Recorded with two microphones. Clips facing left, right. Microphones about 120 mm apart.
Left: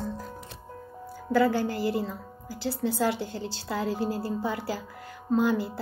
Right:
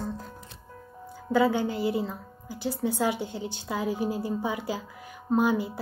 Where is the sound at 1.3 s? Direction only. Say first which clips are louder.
Even; 20° right (ahead or behind).